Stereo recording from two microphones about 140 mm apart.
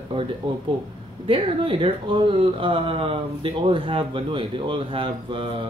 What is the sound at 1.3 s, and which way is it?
Speech, 40° right (ahead or behind).